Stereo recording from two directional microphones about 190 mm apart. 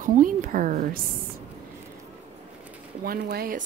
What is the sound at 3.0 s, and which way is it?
Speech, 55° right (ahead or behind).